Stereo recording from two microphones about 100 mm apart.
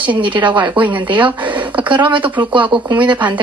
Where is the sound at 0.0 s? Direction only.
55° right (ahead or behind).